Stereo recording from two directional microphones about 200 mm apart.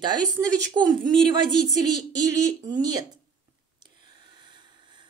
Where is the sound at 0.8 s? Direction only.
20° right (ahead or behind).